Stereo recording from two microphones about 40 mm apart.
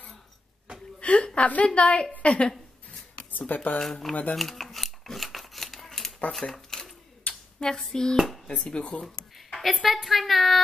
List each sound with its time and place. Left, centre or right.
0.9 s a woman's voice: left
3.3 s speech: left
3.8 s hands: centre
4.1 s speech: left
4.4 s a sound: centre
5.1 s scissors: centre
6.4 s speech: centre
7.3 s a sound: left
7.6 s hands: centre
8.7 s speech: left
9.6 s a woman's voice: centre
10.0 s a sound: centre